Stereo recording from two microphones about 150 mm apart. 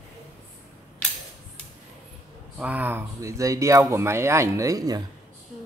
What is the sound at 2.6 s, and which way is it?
Speech, 10° right (ahead or behind).